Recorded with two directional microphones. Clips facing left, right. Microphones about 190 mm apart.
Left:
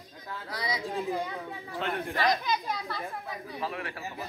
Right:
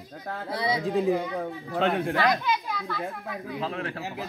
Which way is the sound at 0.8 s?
60° right (ahead or behind).